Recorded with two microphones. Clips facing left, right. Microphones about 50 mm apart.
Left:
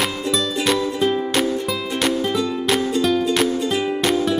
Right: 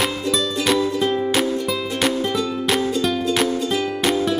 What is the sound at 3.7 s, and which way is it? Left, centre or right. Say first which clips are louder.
Music: left 1 dB; centre.